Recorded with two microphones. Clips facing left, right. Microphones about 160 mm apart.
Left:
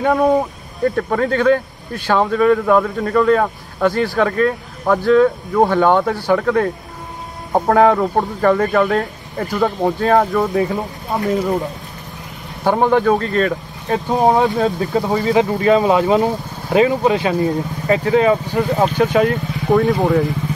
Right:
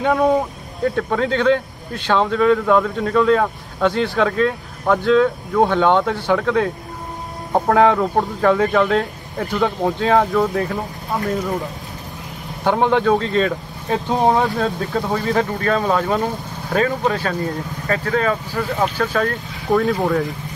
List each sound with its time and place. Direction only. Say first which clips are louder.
0.0 s speech: left 2 dB; 5° left (ahead or behind)
12.6 s speech: left 2 dB; 5° left (ahead or behind)
14.9 s speech: left 4 dB; 15° left (ahead or behind)
19.7 s speech: left 3 dB; centre (ahead or behind)